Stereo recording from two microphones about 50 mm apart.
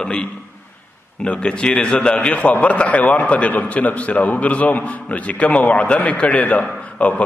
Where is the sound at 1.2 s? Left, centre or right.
Left.